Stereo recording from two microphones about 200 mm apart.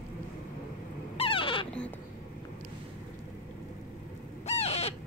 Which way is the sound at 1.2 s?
25° left (ahead or behind).